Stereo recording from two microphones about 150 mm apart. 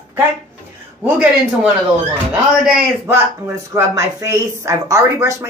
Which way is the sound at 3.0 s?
15° right (ahead or behind).